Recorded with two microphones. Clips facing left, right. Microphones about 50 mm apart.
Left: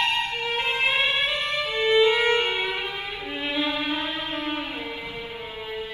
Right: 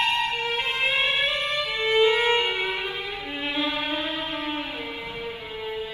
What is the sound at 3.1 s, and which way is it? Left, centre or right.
Violin, left.